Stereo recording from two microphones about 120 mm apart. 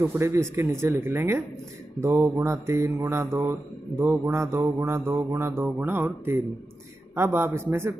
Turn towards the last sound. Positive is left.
turn(degrees=-20)  # may be behind; listen again after turning